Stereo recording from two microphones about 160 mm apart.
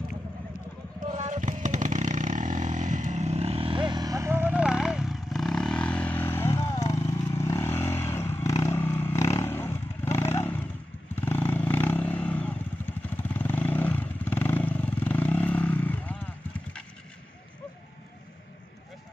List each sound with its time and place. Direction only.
1.1 s vehicle: 50° right (ahead or behind); by 16.2 s 10° left (ahead or behind)